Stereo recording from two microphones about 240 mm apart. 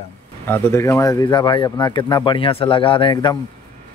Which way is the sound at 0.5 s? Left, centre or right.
Centre.